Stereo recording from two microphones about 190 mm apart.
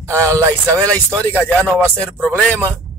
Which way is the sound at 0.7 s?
5° left (ahead or behind).